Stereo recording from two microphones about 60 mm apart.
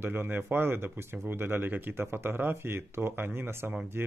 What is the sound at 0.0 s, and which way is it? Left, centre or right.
Speech, right.